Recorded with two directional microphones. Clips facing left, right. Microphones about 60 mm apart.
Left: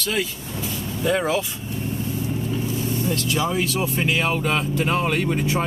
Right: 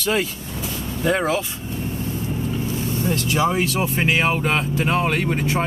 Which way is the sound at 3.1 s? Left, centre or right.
Right.